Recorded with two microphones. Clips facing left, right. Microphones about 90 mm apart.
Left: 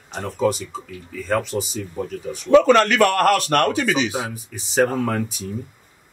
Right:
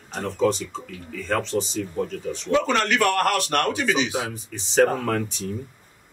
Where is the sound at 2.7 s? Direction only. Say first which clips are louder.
Left 6 dB; 60° left (ahead or behind); by 4.0 s 45° left (ahead or behind).